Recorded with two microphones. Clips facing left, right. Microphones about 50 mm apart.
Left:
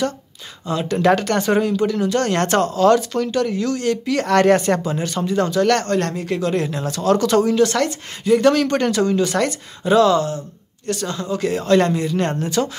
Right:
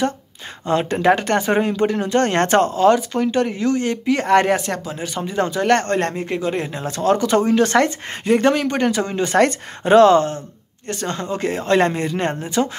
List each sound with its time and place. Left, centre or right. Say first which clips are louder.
0.7 s speech: right 3 dB; right
0.9 s speech: left 2 dB; right
2.9 s speech: even; centre
4.5 s speech: left 5 dB; centre
4.9 s speech: left 3 dB; centre
5.2 s speech: left 2 dB; right
8.5 s speech: left 1 dB; centre
9.0 s speech: right 1 dB; right
12.2 s speech: even; right